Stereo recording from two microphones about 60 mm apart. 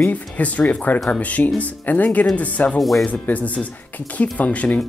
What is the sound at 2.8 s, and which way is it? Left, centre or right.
Speech, centre.